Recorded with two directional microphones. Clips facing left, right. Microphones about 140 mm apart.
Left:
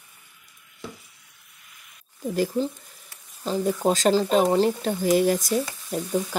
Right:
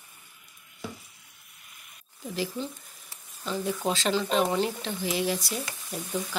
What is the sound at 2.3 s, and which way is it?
Speech, 45° left (ahead or behind).